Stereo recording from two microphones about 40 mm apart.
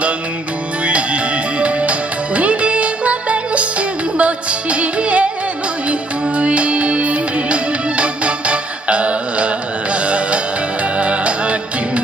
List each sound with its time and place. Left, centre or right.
0.8 s music: right